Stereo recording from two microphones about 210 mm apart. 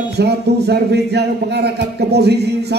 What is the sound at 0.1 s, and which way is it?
Speech, 50° right (ahead or behind).